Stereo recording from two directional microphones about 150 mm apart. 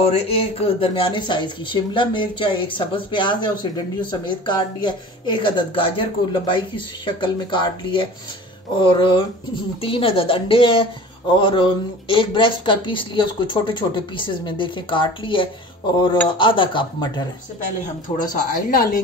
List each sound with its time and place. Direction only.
0.0 s speech: 40° left (ahead or behind)
18.1 s a woman's voice: 60° left (ahead or behind)